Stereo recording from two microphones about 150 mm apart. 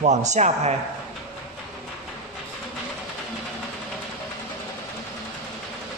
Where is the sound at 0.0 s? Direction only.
50° right (ahead or behind).